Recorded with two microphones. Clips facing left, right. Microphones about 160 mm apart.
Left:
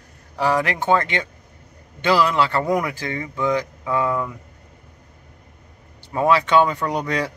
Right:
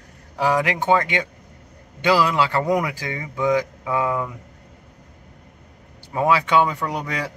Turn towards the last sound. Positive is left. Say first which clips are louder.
# left 4 dB
turn(degrees=-5)  # may be behind; listen again after turning